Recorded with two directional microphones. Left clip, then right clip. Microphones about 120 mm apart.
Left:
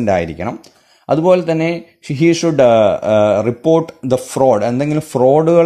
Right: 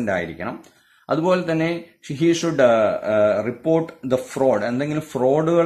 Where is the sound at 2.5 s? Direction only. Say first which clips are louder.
Left 6 dB; 75° left (ahead or behind).